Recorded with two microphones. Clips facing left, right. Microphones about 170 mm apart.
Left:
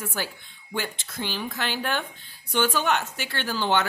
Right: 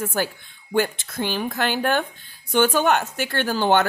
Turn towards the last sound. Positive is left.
turn(degrees=-50)  # may be behind; listen again after turning